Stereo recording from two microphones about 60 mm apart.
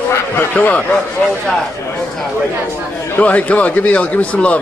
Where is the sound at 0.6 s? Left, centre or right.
Left.